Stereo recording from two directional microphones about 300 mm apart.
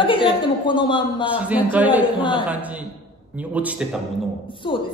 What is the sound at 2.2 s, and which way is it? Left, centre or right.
Speech, centre.